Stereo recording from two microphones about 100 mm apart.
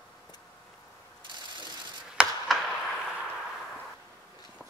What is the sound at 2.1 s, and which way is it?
Chop, centre (ahead or behind).